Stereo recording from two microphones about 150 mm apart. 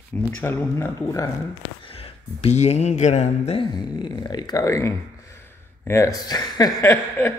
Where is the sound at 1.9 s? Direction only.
40° left (ahead or behind).